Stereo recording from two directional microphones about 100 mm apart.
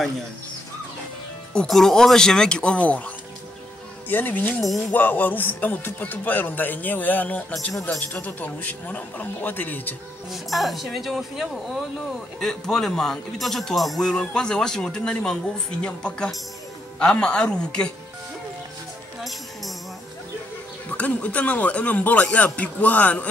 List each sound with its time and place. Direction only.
1.5 s a man's voice: 5° left (ahead or behind)
4.1 s a man's voice: 20° left (ahead or behind)
10.3 s a man's voice: centre (ahead or behind)
20.9 s a man's voice: 15° left (ahead or behind)